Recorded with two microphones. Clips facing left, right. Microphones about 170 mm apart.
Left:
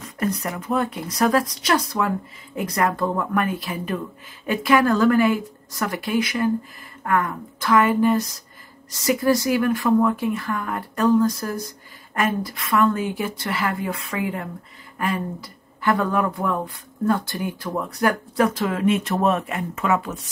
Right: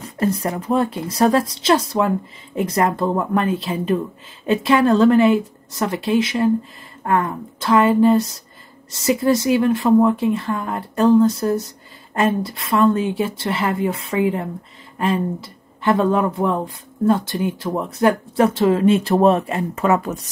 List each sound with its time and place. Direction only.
0.0 s speech: 30° right (ahead or behind)